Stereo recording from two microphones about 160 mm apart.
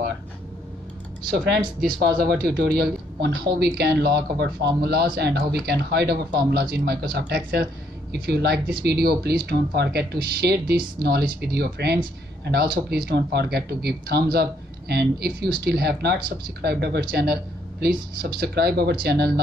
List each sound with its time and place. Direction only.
1.2 s speech: 75° right (ahead or behind)
12.7 s speech: 75° right (ahead or behind)
17.1 s speech: 80° right